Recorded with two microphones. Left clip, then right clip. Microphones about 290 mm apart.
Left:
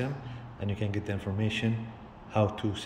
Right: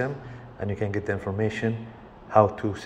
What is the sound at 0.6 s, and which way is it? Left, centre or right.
Speech, right.